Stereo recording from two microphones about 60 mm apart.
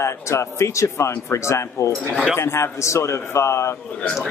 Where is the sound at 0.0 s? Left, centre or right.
Left.